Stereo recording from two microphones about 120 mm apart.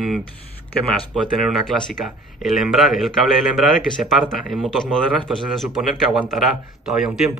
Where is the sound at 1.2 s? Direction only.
Centre (ahead or behind).